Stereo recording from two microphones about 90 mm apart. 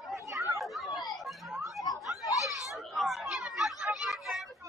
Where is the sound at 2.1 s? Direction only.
40° left (ahead or behind).